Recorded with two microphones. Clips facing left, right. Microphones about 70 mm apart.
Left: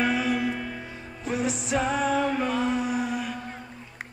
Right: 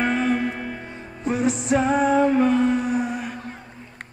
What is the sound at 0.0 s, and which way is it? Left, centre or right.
Music, right.